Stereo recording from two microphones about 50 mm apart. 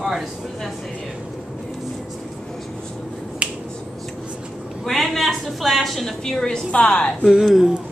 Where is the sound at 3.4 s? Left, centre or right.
Right.